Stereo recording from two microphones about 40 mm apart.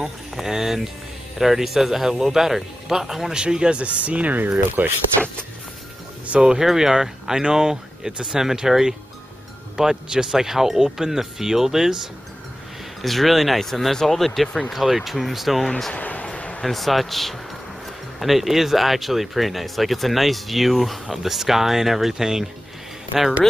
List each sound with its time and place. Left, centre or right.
0.4 s speech: centre
3.8 s speech: right
4.6 s speech: right
6.4 s speech: centre
13.0 s speech: centre
15.9 s a sound: left
16.6 s speech: centre